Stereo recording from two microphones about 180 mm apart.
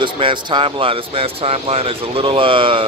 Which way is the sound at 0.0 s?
25° right (ahead or behind).